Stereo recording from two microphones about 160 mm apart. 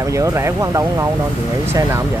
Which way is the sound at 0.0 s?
20° right (ahead or behind).